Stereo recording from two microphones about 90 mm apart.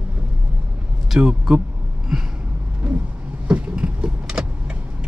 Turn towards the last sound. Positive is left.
turn(degrees=-10)  # may be behind; listen again after turning